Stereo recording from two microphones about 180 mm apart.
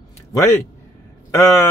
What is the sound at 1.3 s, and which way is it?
Speech, 15° left (ahead or behind).